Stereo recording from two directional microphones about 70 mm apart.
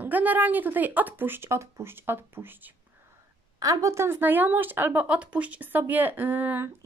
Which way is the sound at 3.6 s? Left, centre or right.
Right.